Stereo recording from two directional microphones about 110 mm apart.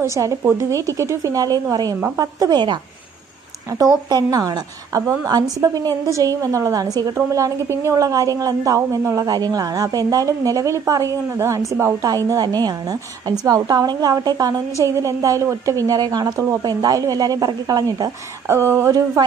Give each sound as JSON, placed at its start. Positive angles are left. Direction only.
{"t": 0.0, "sound": "a woman's voice", "side_deg": -30}